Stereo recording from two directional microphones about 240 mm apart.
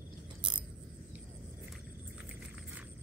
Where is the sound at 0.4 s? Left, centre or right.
Centre.